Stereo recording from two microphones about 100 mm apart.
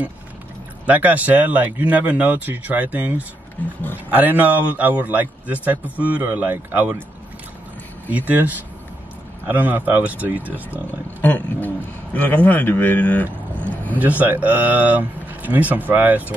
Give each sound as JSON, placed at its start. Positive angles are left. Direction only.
{"t": 0.8, "sound": "speech", "side_deg": -15}
{"t": 8.1, "sound": "speech", "side_deg": -15}
{"t": 11.1, "sound": "speech", "side_deg": 20}
{"t": 13.9, "sound": "speech", "side_deg": -15}